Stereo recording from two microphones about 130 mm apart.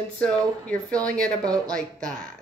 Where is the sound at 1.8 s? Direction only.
90° right.